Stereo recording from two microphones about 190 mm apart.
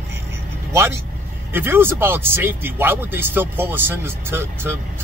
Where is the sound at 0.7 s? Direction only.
15° right (ahead or behind).